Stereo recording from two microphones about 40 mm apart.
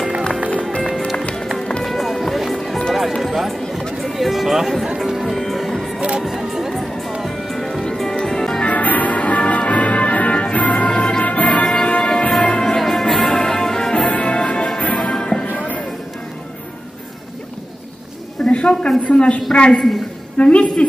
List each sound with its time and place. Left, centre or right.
0.8 s music: centre
4.0 s run: centre
4.9 s music: centre
5.9 s music: right
6.2 s music: centre
8.6 s music: left
10.9 s music: left
11.2 s music: left
11.6 s music: left
14.0 s music: left
15.0 s music: centre
18.4 s a sound: left
19.5 s a woman's voice: left
20.3 s a sound: left